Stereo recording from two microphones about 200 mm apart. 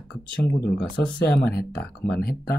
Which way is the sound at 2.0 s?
50° left (ahead or behind).